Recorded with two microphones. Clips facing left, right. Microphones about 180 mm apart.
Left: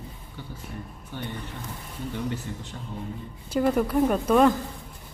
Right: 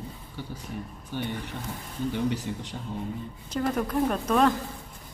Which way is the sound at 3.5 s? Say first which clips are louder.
Left 4 dB; 10° left (ahead or behind).